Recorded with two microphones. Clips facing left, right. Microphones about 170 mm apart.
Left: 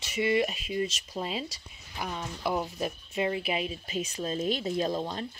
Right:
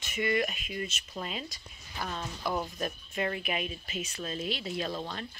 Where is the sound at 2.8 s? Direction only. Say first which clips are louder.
Left 3 dB; 25° left (ahead or behind); by 4.9 s 40° left (ahead or behind).